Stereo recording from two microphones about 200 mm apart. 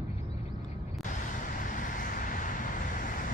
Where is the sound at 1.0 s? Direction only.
40° left (ahead or behind).